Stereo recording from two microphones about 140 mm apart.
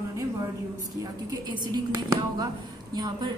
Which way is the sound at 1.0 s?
30° right (ahead or behind).